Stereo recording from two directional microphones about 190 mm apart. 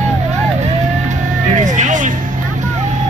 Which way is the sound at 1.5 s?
40° right (ahead or behind).